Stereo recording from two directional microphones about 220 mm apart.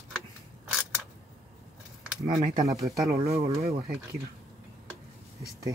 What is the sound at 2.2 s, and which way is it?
Speech, 15° right (ahead or behind).